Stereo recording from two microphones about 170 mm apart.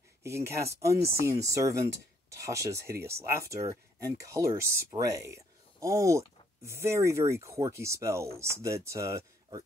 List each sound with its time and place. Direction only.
0.5 s speech: 15° right (ahead or behind)